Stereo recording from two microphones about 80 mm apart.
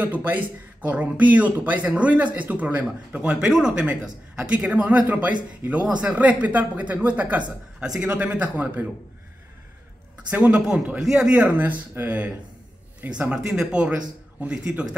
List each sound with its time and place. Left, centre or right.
0.0 s speech: right
7.8 s a man's voice: centre
8.1 s speech: centre
10.3 s speech: centre
11.5 s speech: right
13.2 s speech: centre